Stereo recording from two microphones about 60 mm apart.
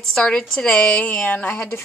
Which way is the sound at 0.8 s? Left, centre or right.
Left.